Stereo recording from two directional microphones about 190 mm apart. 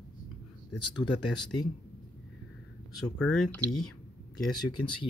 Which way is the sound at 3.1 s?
5° left (ahead or behind).